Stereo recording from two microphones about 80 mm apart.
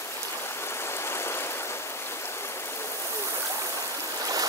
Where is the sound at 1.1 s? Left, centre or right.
Left.